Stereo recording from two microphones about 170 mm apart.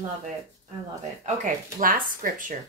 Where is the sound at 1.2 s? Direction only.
50° right (ahead or behind).